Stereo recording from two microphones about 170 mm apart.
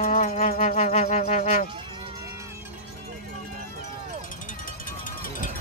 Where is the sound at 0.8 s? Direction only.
40° left (ahead or behind).